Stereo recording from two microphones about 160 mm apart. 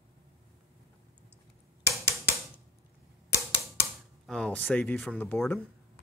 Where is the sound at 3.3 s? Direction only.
15° left (ahead or behind).